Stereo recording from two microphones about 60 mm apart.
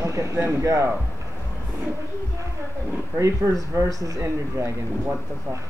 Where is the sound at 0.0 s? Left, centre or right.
Right.